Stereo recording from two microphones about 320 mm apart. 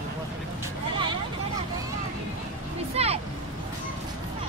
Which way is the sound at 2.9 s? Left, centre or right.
Centre.